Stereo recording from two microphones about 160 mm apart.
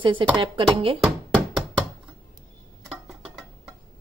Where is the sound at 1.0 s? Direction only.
Centre (ahead or behind).